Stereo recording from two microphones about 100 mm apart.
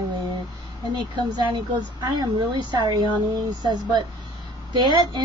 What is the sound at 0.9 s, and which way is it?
A woman's voice, 45° right (ahead or behind).